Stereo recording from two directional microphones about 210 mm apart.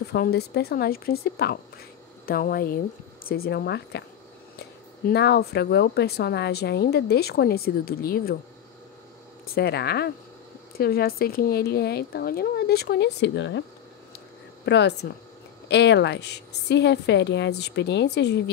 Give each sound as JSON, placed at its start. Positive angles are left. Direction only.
{"t": 0.1, "sound": "a woman's voice", "side_deg": 50}
{"t": 5.0, "sound": "a woman's voice", "side_deg": 50}
{"t": 9.5, "sound": "a woman's voice", "side_deg": 50}
{"t": 14.7, "sound": "a woman's voice", "side_deg": 55}